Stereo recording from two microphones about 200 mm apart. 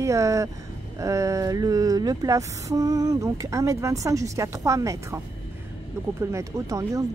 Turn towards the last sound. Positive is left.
turn(degrees=-15)  # may be behind; listen again after turning